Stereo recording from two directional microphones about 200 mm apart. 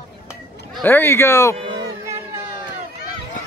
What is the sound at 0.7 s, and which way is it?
Speech, 10° left (ahead or behind).